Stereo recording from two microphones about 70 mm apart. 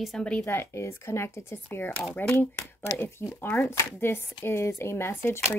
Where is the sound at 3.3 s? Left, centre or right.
Left.